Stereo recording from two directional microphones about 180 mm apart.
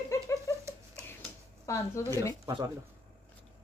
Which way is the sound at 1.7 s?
15° left (ahead or behind).